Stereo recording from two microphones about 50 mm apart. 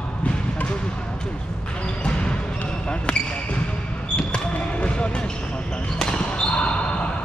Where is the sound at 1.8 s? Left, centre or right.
Left.